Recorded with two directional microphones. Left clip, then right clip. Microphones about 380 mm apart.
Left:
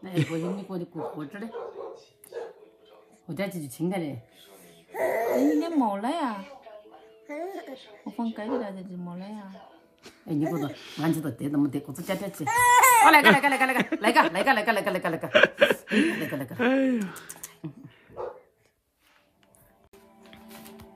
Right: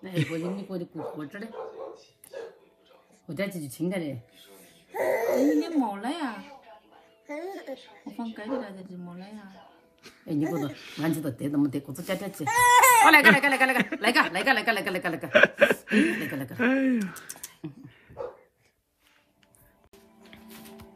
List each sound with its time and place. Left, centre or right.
0.0 s speech: centre
3.3 s speech: centre
4.9 s wail: centre
5.8 s speech: centre
7.2 s speech: centre
10.0 s speech: centre
20.2 s music: centre